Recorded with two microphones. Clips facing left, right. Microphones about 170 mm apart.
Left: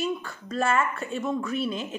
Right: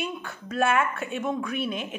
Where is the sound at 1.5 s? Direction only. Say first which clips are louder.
Left 1 dB; 60° right (ahead or behind).